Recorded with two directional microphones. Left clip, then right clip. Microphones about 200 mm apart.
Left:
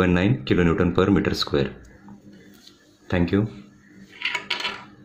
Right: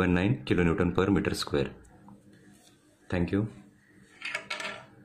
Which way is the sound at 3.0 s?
Centre (ahead or behind).